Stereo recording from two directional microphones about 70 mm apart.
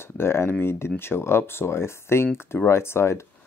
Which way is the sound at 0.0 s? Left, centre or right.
Left.